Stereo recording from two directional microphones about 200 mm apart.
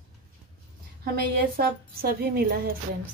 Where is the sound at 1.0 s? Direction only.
50° right (ahead or behind).